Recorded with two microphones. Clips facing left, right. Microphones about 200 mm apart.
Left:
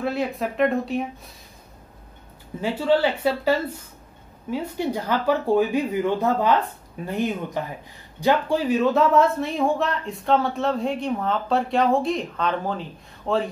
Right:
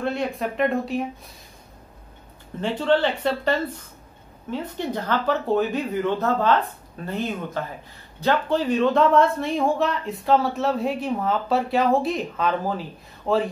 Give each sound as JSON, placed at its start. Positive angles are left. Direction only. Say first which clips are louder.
{"t": 0.0, "sound": "speech", "louder": "even", "side_deg": 5}
{"t": 2.6, "sound": "speech", "louder": "even", "side_deg": 5}